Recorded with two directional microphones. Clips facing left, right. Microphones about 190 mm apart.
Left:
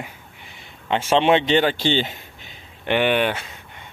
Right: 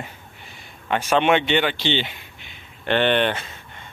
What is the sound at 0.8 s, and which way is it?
Speech, 25° left (ahead or behind).